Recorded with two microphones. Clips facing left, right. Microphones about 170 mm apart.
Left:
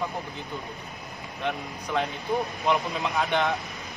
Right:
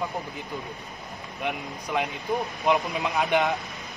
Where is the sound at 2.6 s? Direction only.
15° right (ahead or behind).